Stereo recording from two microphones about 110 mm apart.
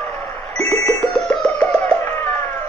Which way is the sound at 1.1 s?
10° left (ahead or behind).